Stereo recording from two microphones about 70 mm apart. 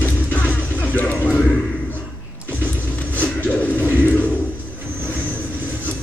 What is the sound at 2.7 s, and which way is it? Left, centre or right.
Music, left.